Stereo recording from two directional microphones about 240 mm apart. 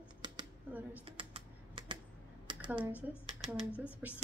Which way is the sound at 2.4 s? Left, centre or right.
Centre.